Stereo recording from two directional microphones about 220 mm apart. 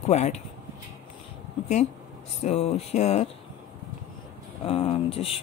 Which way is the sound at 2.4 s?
30° left (ahead or behind).